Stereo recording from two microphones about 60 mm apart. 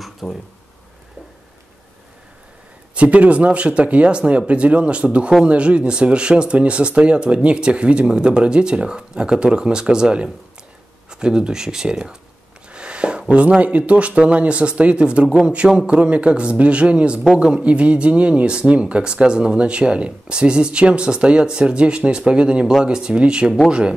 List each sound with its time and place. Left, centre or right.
0.0 s speech: centre
2.9 s speech: right
12.7 s a sound: centre
13.3 s speech: right